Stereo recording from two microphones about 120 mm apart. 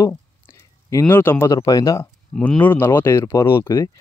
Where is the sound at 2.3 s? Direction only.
10° left (ahead or behind).